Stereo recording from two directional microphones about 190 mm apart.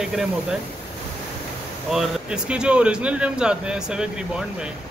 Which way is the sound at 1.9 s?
5° right (ahead or behind).